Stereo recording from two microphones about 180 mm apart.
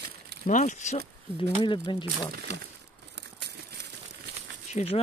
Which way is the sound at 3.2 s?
70° right (ahead or behind).